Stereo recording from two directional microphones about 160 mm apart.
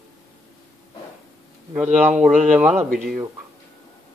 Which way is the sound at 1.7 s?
5° right (ahead or behind).